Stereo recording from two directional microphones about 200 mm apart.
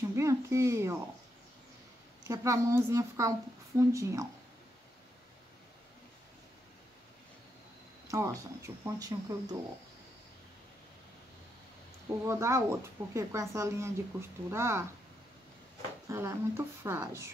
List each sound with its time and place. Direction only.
0.1 s a sound: 15° right (ahead or behind)
2.2 s a woman's voice: 15° right (ahead or behind)
8.1 s a woman's voice: 15° right (ahead or behind)
12.3 s a woman's voice: 15° right (ahead or behind)
16.1 s a woman's voice: 15° right (ahead or behind)